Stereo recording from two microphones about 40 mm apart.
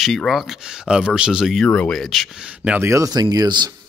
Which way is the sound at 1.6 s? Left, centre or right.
Left.